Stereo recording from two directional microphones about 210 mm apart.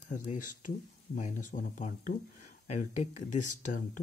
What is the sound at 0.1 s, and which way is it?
Speech, 40° left (ahead or behind).